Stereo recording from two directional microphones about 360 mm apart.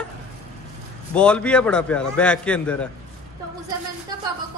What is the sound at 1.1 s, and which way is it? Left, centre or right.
Speech, centre.